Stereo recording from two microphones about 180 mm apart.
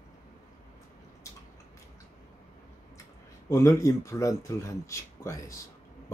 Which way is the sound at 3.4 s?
15° left (ahead or behind).